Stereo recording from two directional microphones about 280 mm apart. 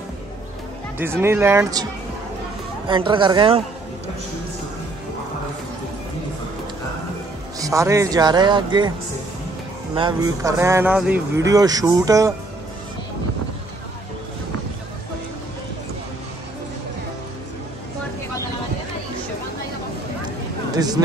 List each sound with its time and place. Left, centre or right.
0.9 s speech: centre
2.9 s speech: centre
7.5 s speech: centre
9.9 s speech: centre
20.7 s speech: centre